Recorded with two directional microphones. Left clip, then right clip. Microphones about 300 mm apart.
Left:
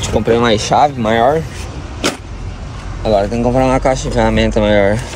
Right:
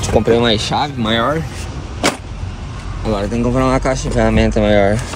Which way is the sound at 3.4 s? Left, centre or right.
Centre.